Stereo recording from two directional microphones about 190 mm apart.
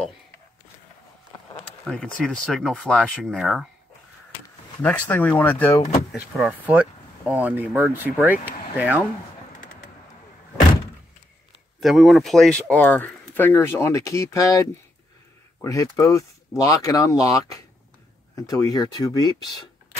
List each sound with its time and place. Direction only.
1.9 s speech: 5° left (ahead or behind)
4.8 s speech: 10° left (ahead or behind)
6.1 s speech: 5° right (ahead or behind)
11.8 s speech: centre (ahead or behind); by 19.6 s 20° left (ahead or behind)